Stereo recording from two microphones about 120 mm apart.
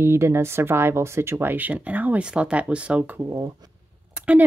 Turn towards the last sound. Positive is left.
turn(degrees=-10)  # may be behind; listen again after turning